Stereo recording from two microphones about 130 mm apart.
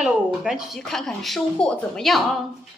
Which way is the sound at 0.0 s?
5° right (ahead or behind).